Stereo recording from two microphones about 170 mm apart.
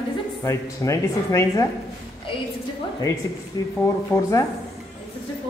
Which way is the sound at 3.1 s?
20° left (ahead or behind).